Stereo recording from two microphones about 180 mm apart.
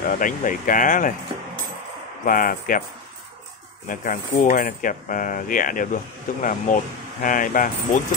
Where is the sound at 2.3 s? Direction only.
50° left (ahead or behind).